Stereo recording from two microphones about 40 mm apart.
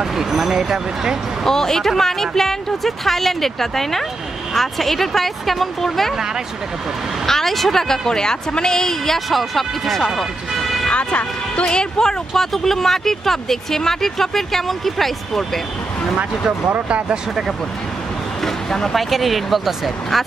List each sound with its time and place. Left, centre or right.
0.0 s speech: centre
1.4 s a woman's voice: centre
7.2 s a woman's voice: centre
10.9 s speech: left
11.7 s speech: centre
18.4 s a woman's voice: centre